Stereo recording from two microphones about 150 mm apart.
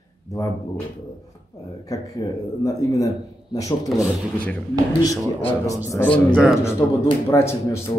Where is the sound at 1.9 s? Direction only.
25° left (ahead or behind).